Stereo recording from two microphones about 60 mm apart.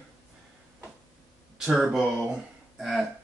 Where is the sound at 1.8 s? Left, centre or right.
Centre.